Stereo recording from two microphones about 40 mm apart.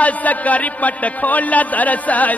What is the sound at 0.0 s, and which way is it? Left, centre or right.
A man's voice, left.